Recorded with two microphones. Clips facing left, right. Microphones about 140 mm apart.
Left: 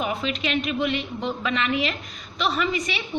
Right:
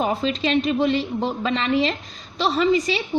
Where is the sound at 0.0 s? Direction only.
30° right (ahead or behind).